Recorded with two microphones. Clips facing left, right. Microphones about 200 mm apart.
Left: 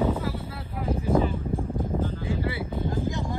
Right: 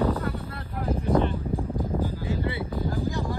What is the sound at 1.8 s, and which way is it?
Music, 10° right (ahead or behind).